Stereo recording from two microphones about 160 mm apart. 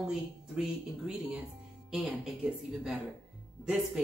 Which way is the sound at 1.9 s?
5° right (ahead or behind).